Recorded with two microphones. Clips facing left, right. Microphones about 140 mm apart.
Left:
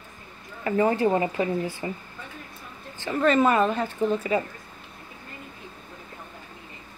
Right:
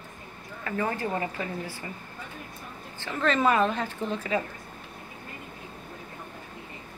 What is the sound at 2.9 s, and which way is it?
A woman's voice, 10° left (ahead or behind).